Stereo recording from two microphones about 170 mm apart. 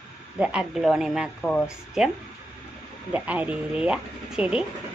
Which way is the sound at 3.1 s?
10° right (ahead or behind).